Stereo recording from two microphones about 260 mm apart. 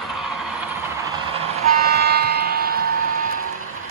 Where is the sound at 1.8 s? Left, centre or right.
Right.